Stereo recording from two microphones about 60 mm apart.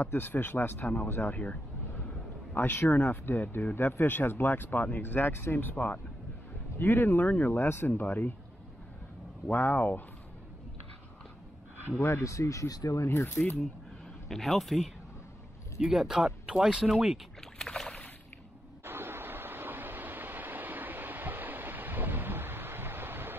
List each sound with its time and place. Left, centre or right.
0.0 s speech: left
9.5 s speech: left
9.8 s speech: left
12.0 s speech: left
13.0 s speech: left
14.3 s speech: centre
17.6 s boat: centre
18.9 s train: right